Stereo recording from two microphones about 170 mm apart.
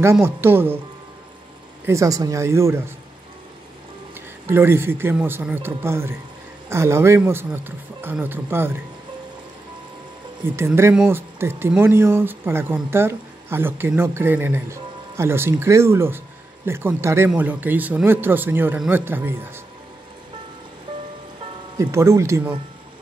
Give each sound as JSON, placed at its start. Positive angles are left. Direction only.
{"t": 0.0, "sound": "speech", "side_deg": -15}
{"t": 1.9, "sound": "speech", "side_deg": -20}
{"t": 4.1, "sound": "speech", "side_deg": -15}
{"t": 10.5, "sound": "speech", "side_deg": -15}
{"t": 21.7, "sound": "speech", "side_deg": -15}